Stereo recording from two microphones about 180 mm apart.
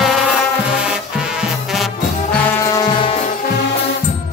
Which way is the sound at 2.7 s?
30° left (ahead or behind).